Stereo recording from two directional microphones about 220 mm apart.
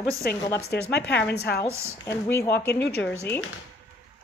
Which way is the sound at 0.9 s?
50° left (ahead or behind).